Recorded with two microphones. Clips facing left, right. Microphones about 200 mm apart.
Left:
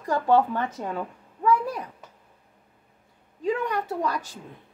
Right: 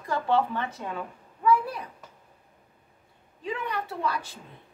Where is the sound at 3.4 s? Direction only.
45° left (ahead or behind).